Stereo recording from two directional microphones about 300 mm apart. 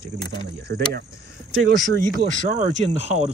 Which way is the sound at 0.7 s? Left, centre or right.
Right.